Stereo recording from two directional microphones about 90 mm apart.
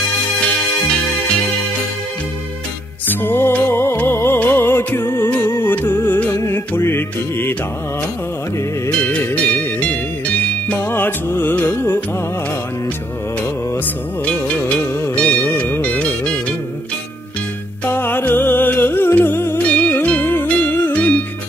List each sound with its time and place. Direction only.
3.1 s music: 25° left (ahead or behind)
8.8 s music: 15° left (ahead or behind)
10.8 s music: 25° left (ahead or behind)
15.1 s music: 15° left (ahead or behind)
17.8 s music: 25° left (ahead or behind)